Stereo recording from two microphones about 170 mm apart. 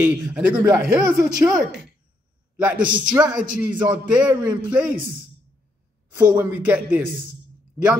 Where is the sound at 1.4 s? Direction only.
5° right (ahead or behind).